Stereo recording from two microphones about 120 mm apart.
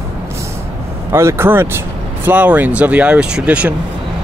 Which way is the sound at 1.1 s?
20° right (ahead or behind).